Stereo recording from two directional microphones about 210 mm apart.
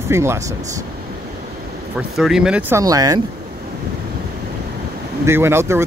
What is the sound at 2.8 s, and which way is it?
Speech, 15° right (ahead or behind).